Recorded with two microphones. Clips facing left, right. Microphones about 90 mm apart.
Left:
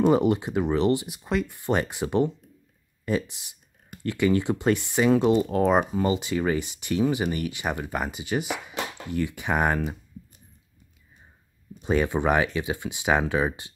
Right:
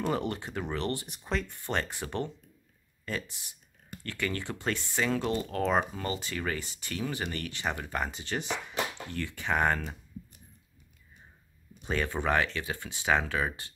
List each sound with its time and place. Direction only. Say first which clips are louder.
0.0 s speech: left 11 dB; 15° left (ahead or behind)
1.1 s speech: left 6 dB; 5° left (ahead or behind)
11.8 s speech: left 7 dB; 15° left (ahead or behind)